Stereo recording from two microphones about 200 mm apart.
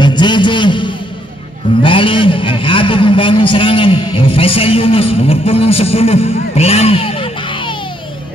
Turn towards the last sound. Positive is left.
turn(degrees=25)  # may be behind; listen again after turning